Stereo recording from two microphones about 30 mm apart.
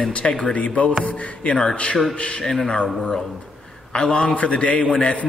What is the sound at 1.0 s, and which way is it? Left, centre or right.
Speech, left.